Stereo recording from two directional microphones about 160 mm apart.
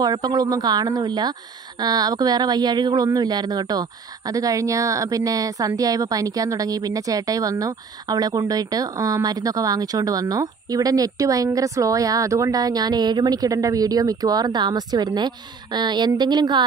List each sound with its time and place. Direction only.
0.0 s speech: 25° right (ahead or behind)